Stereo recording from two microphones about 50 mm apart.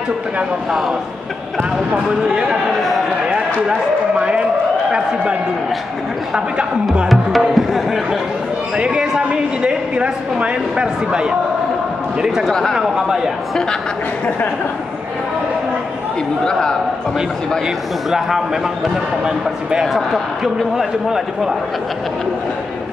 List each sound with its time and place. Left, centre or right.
2.2 s a man's voice: centre
3.3 s run: centre
4.2 s a sound: centre
4.9 s speech: right
7.1 s speech: centre
8.7 s speech: centre
12.7 s a man's voice: centre
16.4 s a man's voice: centre
19.8 s a man's voice: centre